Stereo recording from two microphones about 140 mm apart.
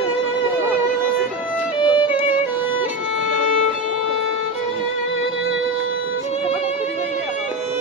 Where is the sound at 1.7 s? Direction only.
35° left (ahead or behind).